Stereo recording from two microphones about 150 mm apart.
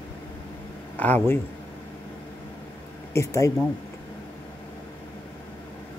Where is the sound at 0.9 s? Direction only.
10° left (ahead or behind).